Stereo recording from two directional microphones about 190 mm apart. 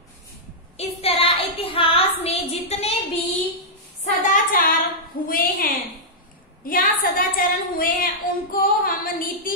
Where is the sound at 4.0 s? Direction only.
40° left (ahead or behind).